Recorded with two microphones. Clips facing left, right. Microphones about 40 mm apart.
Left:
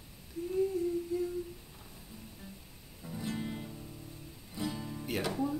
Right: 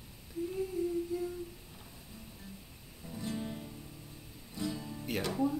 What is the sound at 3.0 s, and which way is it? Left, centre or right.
Music, centre.